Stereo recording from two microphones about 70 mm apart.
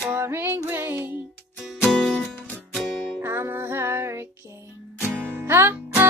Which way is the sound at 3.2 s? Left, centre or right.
Right.